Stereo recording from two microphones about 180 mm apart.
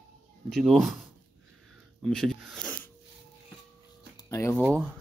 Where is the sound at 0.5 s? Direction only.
Centre (ahead or behind).